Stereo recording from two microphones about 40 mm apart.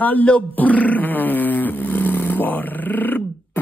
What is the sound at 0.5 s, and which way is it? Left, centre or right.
Roar, left.